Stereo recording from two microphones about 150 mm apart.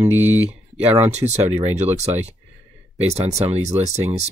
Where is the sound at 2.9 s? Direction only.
45° right (ahead or behind).